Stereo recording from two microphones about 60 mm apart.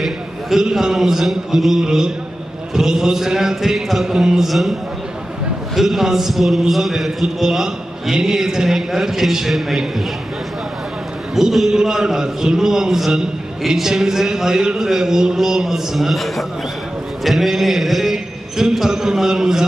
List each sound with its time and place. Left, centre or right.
0.0 s a man's voice: centre
5.8 s a man's voice: centre
11.3 s a man's voice: centre